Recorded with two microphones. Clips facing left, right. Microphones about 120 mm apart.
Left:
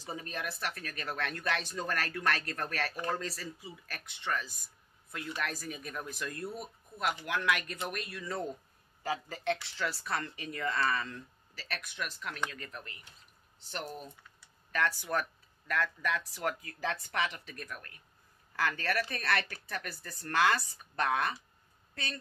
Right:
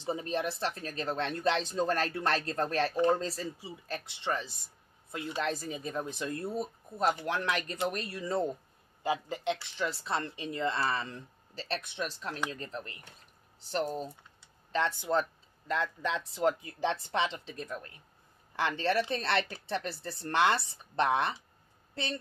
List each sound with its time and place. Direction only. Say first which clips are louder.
0.0 s speech: right 7 dB; 25° right (ahead or behind)